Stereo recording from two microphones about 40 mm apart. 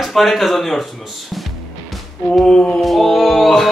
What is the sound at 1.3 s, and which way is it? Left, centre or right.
Music, centre.